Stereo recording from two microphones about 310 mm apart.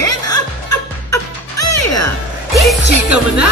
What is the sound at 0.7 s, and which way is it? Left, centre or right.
Music, left.